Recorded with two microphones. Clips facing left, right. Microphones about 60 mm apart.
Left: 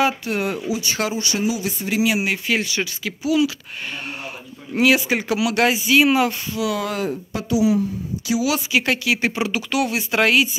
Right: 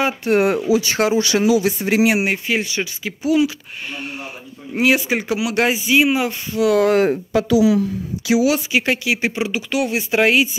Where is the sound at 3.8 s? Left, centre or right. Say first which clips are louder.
Right 1 dB; centre.